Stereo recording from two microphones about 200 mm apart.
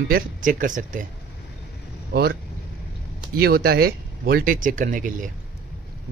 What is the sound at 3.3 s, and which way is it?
Speech, 50° right (ahead or behind).